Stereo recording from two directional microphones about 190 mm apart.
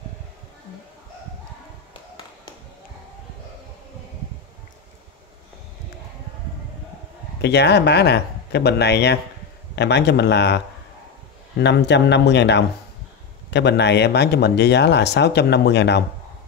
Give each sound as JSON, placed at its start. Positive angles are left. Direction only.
{"t": 7.4, "sound": "speech", "side_deg": 60}